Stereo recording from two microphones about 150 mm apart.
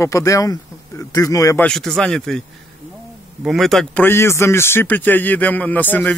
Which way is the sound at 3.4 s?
Centre (ahead or behind).